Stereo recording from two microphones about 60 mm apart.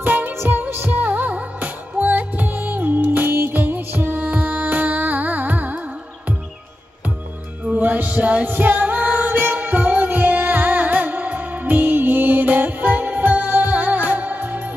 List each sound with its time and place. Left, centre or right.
0.0 s music: right
0.3 s music: right
7.7 s music: right